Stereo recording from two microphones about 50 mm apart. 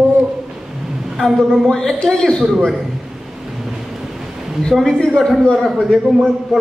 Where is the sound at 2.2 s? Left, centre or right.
Centre.